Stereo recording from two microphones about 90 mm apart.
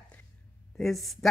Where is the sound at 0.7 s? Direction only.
Centre (ahead or behind).